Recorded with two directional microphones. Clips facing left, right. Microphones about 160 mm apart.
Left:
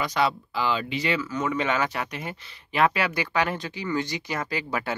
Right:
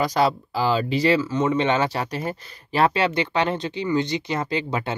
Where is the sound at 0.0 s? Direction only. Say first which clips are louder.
Right 4 dB; 40° right (ahead or behind).